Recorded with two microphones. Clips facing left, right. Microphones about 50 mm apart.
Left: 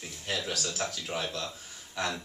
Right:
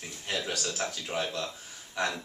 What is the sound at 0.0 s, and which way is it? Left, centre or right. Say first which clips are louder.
Speech: even; centre.